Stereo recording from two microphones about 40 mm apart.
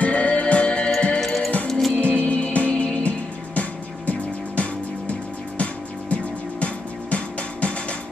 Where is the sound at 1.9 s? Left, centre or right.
Left.